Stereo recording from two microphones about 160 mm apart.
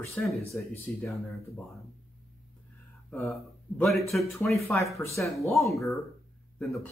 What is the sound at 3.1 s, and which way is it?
Speech, 5° left (ahead or behind).